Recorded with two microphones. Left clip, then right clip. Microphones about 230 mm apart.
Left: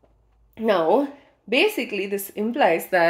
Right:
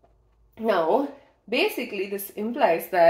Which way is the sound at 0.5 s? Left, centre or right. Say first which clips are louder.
Left 3 dB; left.